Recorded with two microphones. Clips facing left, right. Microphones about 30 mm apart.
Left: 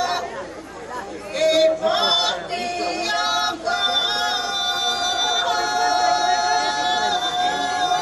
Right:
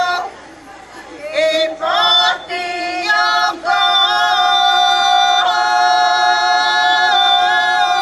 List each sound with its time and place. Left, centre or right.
0.0 s chatter: right
1.3 s choir: right